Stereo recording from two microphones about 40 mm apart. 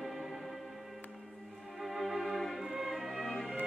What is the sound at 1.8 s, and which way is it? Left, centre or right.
Music, centre.